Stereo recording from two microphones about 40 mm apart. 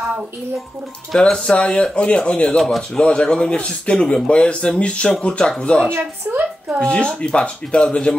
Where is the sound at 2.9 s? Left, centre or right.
Left.